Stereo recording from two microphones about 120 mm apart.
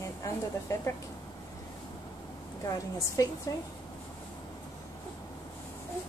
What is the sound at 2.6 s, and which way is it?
A woman's voice, 30° left (ahead or behind).